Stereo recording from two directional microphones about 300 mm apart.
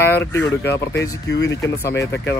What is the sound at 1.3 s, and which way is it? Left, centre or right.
Speech, left.